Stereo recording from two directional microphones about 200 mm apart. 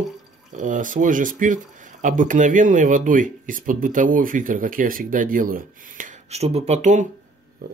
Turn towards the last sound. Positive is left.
turn(degrees=-50)  # may be behind; listen again after turning